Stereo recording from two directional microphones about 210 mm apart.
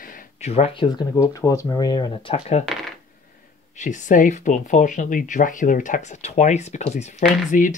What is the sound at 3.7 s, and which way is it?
Speech, 35° left (ahead or behind).